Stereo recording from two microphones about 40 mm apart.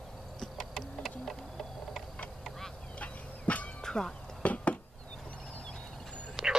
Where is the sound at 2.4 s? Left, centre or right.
Centre.